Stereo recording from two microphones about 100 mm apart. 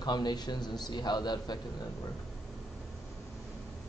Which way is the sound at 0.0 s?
45° left (ahead or behind).